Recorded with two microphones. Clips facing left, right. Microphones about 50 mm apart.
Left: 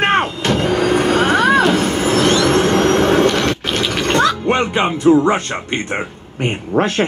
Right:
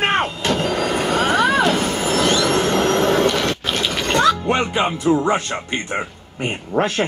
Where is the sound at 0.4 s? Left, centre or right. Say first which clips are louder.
Left 4 dB; left.